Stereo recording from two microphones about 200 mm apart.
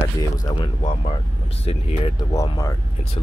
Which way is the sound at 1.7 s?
30° left (ahead or behind).